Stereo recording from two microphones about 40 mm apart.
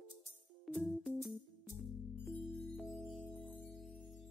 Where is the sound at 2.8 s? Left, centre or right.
Centre.